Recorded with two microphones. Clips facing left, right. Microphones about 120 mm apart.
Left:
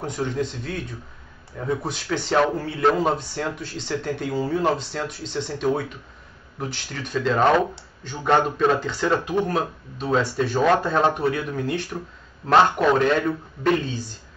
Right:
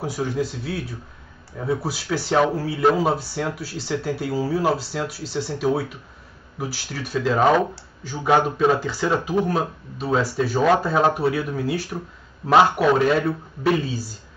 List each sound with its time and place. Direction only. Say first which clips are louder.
0.0 s speech: right 1 dB; 5° right (ahead or behind)